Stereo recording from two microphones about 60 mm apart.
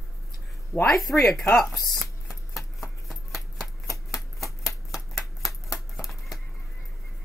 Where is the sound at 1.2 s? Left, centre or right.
Centre.